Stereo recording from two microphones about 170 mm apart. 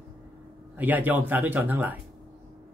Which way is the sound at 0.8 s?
10° right (ahead or behind).